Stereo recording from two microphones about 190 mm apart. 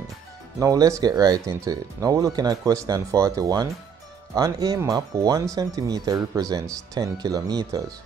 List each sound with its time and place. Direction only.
0.6 s speech: 20° right (ahead or behind)